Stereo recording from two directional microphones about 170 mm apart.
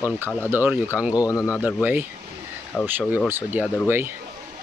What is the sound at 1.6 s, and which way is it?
Speech, 10° right (ahead or behind).